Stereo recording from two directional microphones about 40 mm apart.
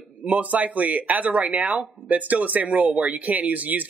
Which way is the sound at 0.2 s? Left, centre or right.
Right.